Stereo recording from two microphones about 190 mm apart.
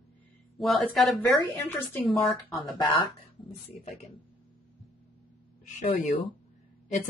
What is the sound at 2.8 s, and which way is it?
Speech, 25° left (ahead or behind).